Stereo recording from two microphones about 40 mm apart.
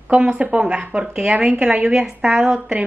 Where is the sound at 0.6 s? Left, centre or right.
Right.